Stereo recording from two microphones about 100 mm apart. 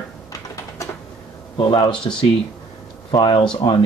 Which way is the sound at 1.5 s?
55° left (ahead or behind).